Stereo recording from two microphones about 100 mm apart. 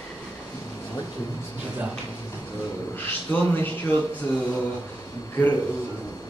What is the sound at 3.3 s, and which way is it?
Speech, 20° left (ahead or behind).